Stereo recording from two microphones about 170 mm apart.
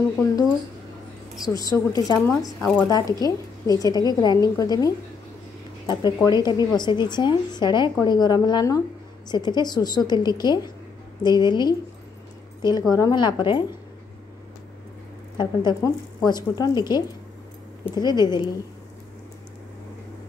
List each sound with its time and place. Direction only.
1.4 s a woman's voice: 20° left (ahead or behind)
2.4 s speech: centre (ahead or behind)
2.9 s a woman's voice: 20° left (ahead or behind)
15.3 s a woman's voice: 25° left (ahead or behind)